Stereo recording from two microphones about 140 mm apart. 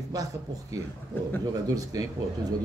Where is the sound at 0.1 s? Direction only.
25° right (ahead or behind).